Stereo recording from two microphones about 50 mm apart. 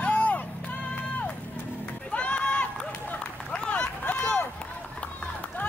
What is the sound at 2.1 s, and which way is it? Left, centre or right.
Run, left.